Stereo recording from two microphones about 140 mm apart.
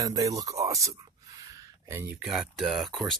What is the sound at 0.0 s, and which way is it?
Speech, 25° right (ahead or behind).